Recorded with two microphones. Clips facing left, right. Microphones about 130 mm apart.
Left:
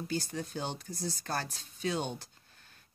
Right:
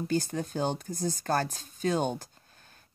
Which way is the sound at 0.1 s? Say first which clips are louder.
Right 6 dB; 50° right (ahead or behind).